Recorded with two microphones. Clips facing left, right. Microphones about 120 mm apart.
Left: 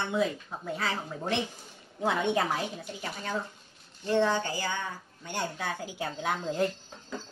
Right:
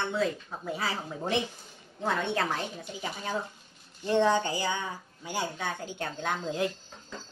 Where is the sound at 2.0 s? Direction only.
15° left (ahead or behind).